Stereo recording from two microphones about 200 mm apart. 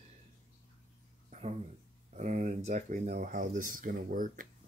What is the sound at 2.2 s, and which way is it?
Speech, 40° right (ahead or behind).